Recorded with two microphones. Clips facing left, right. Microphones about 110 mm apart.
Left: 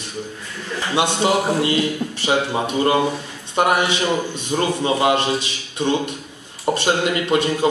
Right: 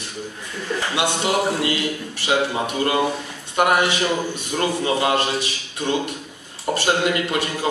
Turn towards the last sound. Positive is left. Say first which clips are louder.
# left 2 dB
turn(degrees=25)  # may be behind; listen again after turning